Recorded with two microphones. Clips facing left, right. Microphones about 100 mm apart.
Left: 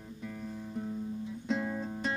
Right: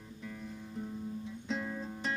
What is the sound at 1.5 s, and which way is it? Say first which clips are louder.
Guitar: left 4 dB; 20° left (ahead or behind).